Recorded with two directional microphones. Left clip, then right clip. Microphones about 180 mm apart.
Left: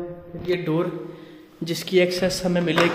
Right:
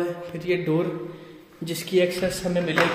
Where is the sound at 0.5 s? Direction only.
Centre (ahead or behind).